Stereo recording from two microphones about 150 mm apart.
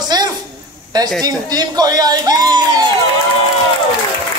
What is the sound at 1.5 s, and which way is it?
A man's voice, 25° right (ahead or behind).